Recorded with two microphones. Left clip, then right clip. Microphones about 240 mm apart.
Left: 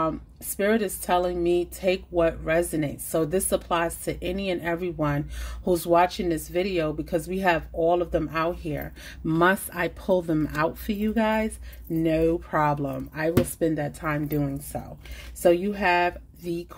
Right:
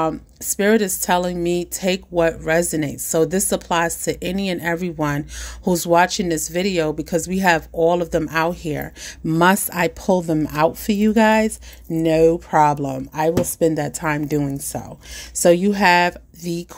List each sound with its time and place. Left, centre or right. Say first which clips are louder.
0.6 s speech: right 7 dB; right